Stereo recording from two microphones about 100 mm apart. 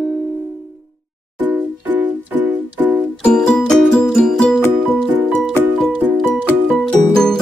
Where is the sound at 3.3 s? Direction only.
10° left (ahead or behind).